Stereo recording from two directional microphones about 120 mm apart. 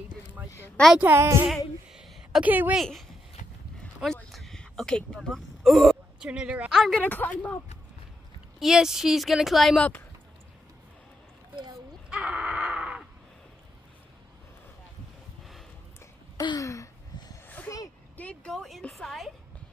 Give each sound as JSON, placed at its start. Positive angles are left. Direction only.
{"t": 0.9, "sound": "speech", "side_deg": -20}
{"t": 1.9, "sound": "a sound", "side_deg": -5}
{"t": 2.5, "sound": "a woman's voice", "side_deg": -15}
{"t": 2.8, "sound": "a woman's voice", "side_deg": 0}
{"t": 6.7, "sound": "a woman's voice", "side_deg": 0}
{"t": 7.0, "sound": "speech", "side_deg": 15}
{"t": 8.5, "sound": "a woman's voice", "side_deg": -5}
{"t": 12.1, "sound": "a sound", "side_deg": -10}
{"t": 16.3, "sound": "a sound", "side_deg": 30}
{"t": 18.1, "sound": "a woman's voice", "side_deg": 10}